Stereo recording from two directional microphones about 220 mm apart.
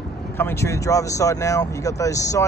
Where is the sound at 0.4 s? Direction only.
10° left (ahead or behind).